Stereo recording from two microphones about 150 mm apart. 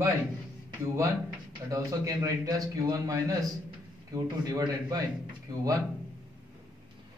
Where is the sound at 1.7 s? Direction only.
20° right (ahead or behind).